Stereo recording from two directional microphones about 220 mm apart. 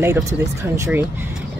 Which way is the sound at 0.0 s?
15° right (ahead or behind).